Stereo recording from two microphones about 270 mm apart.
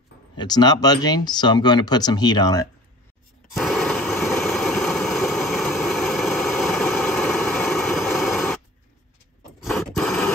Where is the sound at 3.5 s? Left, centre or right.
Centre.